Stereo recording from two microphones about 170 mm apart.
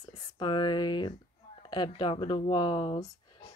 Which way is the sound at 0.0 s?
25° left (ahead or behind).